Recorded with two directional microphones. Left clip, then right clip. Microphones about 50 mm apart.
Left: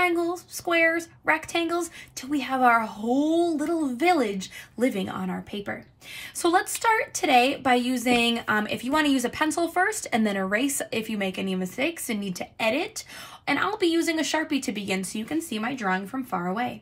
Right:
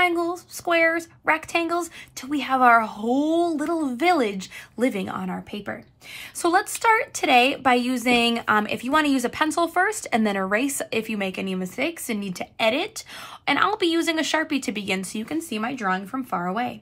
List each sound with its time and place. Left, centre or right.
0.2 s female singing: right
1.3 s a woman's voice: right
6.4 s a woman's voice: right